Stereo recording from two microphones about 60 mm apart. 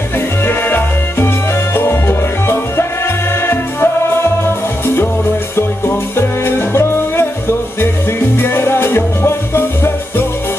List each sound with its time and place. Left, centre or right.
0.5 s music: left
5.6 s music: left